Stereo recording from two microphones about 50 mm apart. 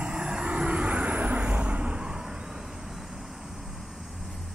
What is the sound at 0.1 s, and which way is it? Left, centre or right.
Vehicle, centre.